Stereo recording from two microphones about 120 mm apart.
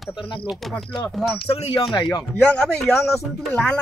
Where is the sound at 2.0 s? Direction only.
40° left (ahead or behind).